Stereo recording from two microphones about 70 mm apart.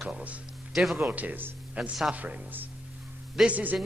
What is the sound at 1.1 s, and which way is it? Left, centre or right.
Speech, right.